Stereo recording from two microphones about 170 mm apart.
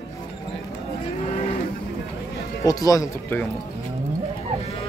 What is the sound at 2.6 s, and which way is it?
Speech, 20° left (ahead or behind).